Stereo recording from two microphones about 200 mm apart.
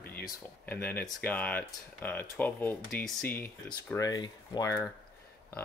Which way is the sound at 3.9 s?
20° left (ahead or behind).